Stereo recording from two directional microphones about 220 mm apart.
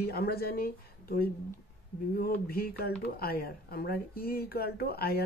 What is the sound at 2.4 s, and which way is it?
Speech, 45° left (ahead or behind).